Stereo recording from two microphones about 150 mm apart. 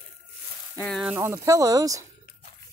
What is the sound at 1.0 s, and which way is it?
Speech, 15° right (ahead or behind).